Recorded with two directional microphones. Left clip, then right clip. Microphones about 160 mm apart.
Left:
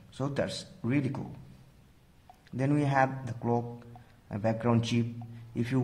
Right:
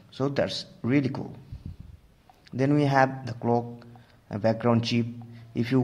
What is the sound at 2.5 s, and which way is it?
Speech, 25° right (ahead or behind).